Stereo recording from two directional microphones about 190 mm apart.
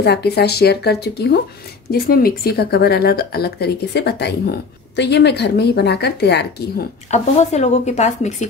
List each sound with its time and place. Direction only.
0.0 s speech: 60° left (ahead or behind)
7.1 s speech: 35° left (ahead or behind)